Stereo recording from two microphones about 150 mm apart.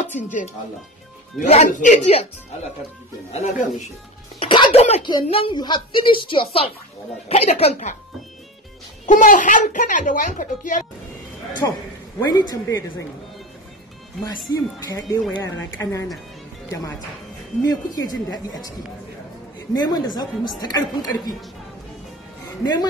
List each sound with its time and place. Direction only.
0.1 s a woman's voice: 60° left (ahead or behind)
3.3 s speech: 45° left (ahead or behind)
4.4 s music: 35° left (ahead or behind)
5.0 s a woman's voice: 35° left (ahead or behind)
9.0 s a woman's voice: 60° left (ahead or behind)
11.6 s a woman's voice: 20° left (ahead or behind)
14.5 s a woman's voice: 25° left (ahead or behind)
17.6 s a woman's voice: 25° left (ahead or behind)
19.7 s a woman's voice: 30° left (ahead or behind)